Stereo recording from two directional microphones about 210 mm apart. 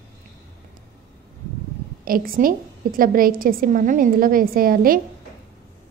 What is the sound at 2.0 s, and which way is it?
A woman's voice, 45° right (ahead or behind).